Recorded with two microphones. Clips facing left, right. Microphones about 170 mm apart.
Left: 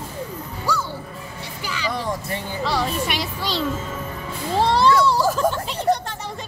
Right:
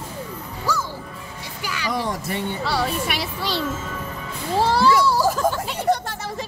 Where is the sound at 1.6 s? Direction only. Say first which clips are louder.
Left 1 dB; 10° right (ahead or behind).